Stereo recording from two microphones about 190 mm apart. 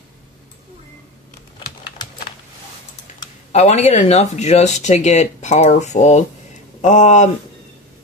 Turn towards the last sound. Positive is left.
turn(degrees=40)  # may be behind; listen again after turning